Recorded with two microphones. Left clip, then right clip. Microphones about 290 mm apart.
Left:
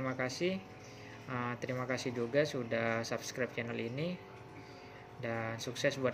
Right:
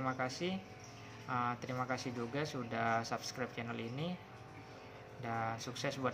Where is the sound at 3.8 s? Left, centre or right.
Right.